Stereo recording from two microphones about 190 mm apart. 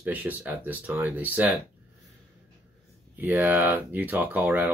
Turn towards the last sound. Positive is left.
turn(degrees=-10)  # may be behind; listen again after turning